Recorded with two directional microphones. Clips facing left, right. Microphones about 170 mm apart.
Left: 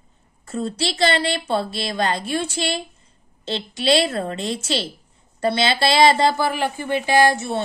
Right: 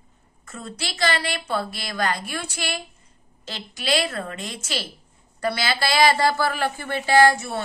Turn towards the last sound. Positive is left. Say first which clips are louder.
# even
turn(degrees=25)  # may be behind; listen again after turning